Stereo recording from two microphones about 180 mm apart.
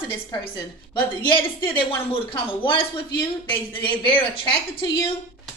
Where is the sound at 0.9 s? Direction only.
25° left (ahead or behind).